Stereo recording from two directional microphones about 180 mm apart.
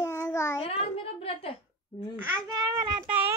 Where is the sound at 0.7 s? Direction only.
35° left (ahead or behind).